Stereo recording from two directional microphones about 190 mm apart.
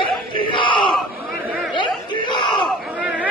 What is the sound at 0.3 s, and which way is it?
Crowd, 25° left (ahead or behind).